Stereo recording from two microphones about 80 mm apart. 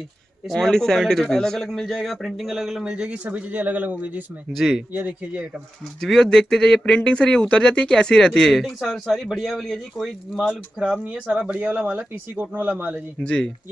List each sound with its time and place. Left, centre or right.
0.5 s a man's voice: centre
4.5 s a man's voice: centre
4.9 s speech: centre
5.9 s a man's voice: centre; by 13.0 s right
13.2 s speech: centre